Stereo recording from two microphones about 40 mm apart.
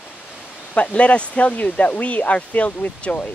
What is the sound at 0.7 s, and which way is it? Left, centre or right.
Speech, left.